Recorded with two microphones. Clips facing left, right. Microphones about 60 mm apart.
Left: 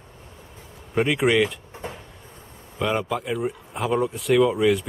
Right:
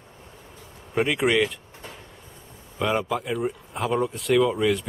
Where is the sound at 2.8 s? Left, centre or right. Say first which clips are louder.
Even; centre.